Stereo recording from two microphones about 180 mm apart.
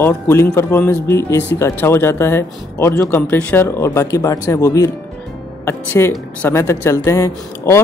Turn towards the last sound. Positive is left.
turn(degrees=15)  # may be behind; listen again after turning